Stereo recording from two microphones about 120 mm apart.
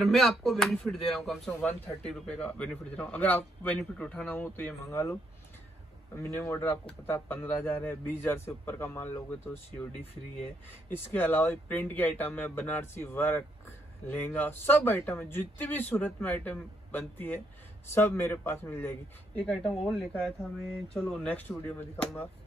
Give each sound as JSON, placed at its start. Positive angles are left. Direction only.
{"t": 0.0, "sound": "a man's voice", "side_deg": 0}
{"t": 6.3, "sound": "a man's voice", "side_deg": 20}
{"t": 10.9, "sound": "speech", "side_deg": 15}